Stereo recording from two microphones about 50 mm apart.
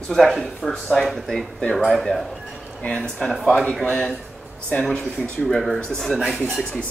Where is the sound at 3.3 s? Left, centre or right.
Centre.